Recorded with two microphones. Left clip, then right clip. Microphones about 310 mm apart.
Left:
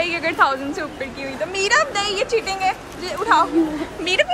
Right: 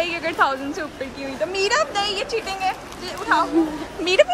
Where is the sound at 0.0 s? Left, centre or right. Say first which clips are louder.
Left 2 dB; centre.